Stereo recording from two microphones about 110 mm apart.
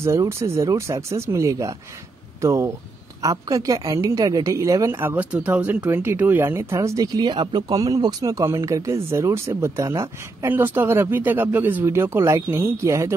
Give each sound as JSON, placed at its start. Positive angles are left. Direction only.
{"t": 0.0, "sound": "a woman's voice", "side_deg": -25}
{"t": 4.9, "sound": "speech", "side_deg": -15}